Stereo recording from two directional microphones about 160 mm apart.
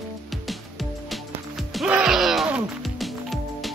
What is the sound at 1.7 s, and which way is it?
Music, 5° right (ahead or behind).